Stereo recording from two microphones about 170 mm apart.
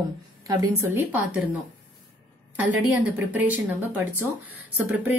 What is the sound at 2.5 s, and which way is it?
A woman's voice, 10° right (ahead or behind).